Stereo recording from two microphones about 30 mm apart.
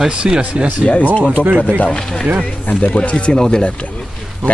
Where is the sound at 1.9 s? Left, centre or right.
Left.